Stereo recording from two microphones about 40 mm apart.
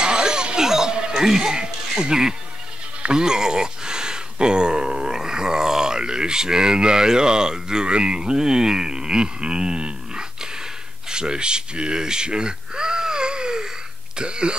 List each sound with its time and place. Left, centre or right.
0.0 s music: centre
3.0 s speech: centre
11.1 s a sound: centre
14.1 s cough: right